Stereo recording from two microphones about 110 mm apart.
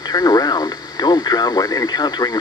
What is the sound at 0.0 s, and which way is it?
Speech, 35° left (ahead or behind).